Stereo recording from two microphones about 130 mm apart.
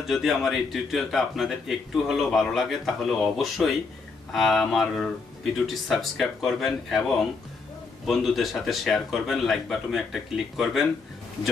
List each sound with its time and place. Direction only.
0.0 s a man's voice: centre (ahead or behind)
8.0 s a man's voice: centre (ahead or behind)